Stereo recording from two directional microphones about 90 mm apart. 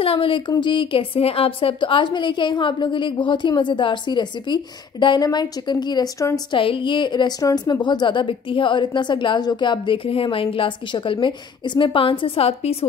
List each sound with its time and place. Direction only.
0.0 s speech: 85° left
0.6 s a woman's voice: 65° left (ahead or behind)
6.1 s a woman's voice: 35° left (ahead or behind)
6.5 s a woman's voice: 70° left (ahead or behind)